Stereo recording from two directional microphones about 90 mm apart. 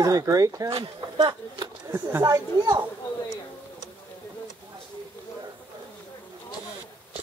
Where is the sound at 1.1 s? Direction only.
55° right (ahead or behind).